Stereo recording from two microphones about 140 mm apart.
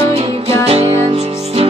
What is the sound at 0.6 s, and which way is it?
Music, 50° right (ahead or behind).